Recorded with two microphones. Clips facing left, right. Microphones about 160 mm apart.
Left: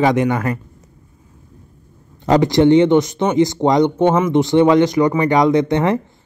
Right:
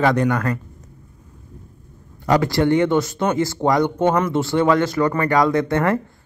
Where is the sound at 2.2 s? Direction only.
20° left (ahead or behind).